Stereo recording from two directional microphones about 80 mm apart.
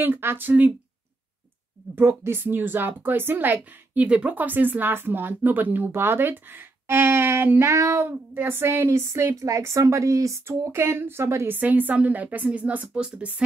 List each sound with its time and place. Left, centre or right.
0.0 s speech: right
2.0 s a woman's voice: right